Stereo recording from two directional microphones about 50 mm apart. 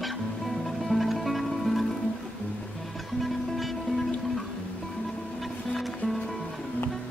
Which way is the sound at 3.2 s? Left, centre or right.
Centre.